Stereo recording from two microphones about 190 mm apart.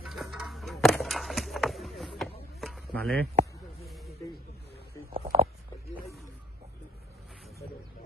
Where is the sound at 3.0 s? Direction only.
55° right (ahead or behind).